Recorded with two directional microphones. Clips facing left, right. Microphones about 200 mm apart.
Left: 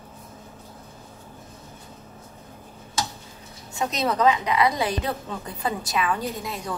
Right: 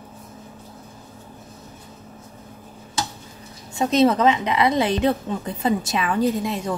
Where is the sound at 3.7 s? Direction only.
25° right (ahead or behind).